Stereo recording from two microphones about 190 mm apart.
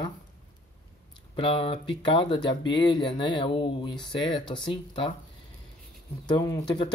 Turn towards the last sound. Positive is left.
turn(degrees=20)  # may be behind; listen again after turning